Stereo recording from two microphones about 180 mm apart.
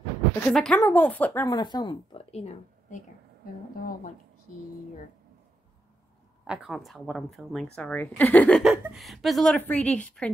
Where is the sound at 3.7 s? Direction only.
50° left (ahead or behind).